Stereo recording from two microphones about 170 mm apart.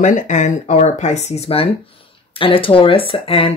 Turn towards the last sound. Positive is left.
turn(degrees=35)  # may be behind; listen again after turning